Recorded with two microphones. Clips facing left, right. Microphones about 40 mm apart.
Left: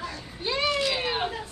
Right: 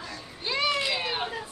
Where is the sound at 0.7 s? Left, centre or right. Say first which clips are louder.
Left 2 dB; centre.